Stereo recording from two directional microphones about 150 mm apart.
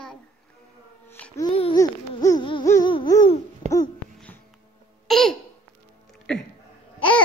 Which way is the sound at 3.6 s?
45° right (ahead or behind).